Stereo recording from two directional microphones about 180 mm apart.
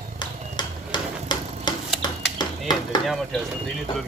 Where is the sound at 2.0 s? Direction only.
25° left (ahead or behind).